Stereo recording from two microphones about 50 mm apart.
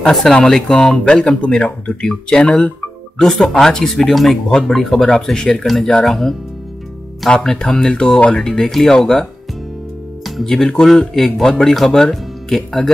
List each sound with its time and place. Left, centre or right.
0.1 s speech: centre
7.2 s speech: centre
10.4 s speech: centre